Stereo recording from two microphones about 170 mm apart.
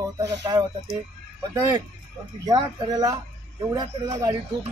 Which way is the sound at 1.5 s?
25° right (ahead or behind).